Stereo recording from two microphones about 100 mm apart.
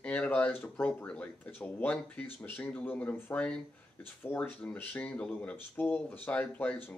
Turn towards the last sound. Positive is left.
turn(degrees=15)  # may be behind; listen again after turning